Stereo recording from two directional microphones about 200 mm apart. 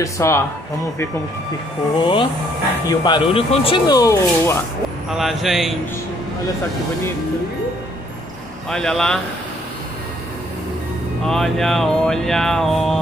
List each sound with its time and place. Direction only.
0.0 s speech: 15° left (ahead or behind)
2.0 s speech: 25° left (ahead or behind)
5.1 s music: centre (ahead or behind)
8.6 s music: 5° left (ahead or behind)
11.2 s music: centre (ahead or behind)